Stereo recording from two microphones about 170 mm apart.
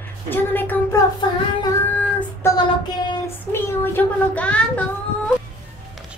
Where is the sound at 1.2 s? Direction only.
25° left (ahead or behind).